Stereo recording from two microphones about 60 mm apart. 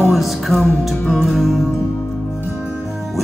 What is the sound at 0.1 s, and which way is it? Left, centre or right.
Music, centre.